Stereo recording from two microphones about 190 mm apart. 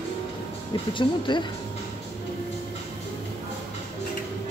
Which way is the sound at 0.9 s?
25° left (ahead or behind).